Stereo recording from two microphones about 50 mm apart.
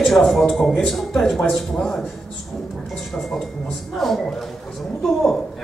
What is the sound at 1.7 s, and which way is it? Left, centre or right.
Speech, centre.